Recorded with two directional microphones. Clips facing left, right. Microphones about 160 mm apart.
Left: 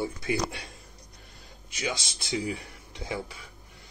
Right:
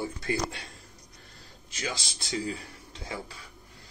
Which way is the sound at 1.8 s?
15° left (ahead or behind).